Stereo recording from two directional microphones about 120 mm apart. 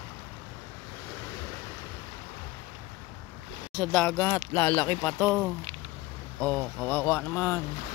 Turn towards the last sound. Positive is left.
turn(degrees=20)  # may be behind; listen again after turning